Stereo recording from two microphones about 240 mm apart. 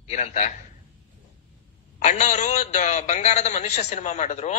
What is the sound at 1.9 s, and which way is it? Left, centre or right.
A man's voice, left.